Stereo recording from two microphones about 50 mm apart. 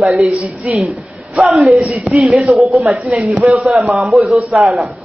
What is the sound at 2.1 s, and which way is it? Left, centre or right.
Speech, centre.